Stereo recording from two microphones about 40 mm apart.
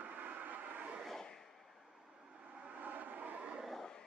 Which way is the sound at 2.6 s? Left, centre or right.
Right.